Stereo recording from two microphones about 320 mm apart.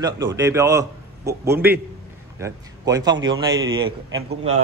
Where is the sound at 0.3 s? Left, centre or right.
Centre.